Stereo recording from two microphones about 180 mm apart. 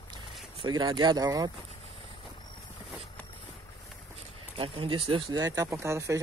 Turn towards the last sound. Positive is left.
turn(degrees=-15)  # may be behind; listen again after turning